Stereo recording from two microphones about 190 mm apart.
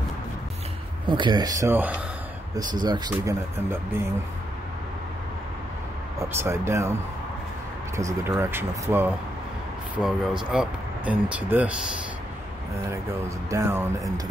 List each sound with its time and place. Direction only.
1.0 s speech: 25° right (ahead or behind); by 2.0 s 10° right (ahead or behind)
2.5 s speech: 20° right (ahead or behind)
6.1 s speech: 15° right (ahead or behind)
7.9 s speech: 15° right (ahead or behind)
13.5 s speech: 15° right (ahead or behind)